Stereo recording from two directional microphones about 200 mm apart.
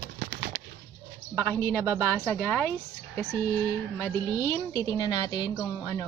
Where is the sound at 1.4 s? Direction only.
10° left (ahead or behind).